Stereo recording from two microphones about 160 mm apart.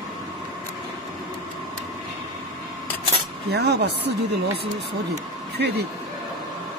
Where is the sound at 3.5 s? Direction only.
90° right.